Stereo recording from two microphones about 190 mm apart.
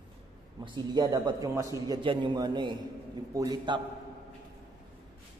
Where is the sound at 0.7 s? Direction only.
20° right (ahead or behind).